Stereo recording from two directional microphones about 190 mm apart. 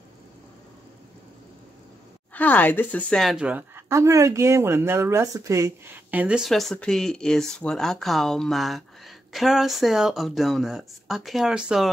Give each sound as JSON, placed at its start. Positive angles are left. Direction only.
{"t": 2.3, "sound": "a woman's voice", "side_deg": 10}